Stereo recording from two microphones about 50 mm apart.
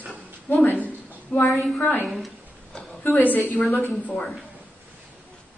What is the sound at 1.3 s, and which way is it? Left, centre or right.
Speech, left.